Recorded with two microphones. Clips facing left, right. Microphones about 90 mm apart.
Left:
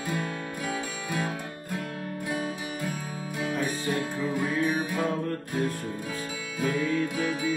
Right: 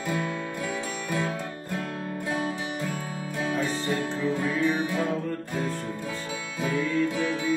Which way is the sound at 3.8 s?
15° left (ahead or behind).